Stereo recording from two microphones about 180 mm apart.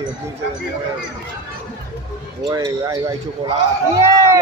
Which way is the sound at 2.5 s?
20° right (ahead or behind).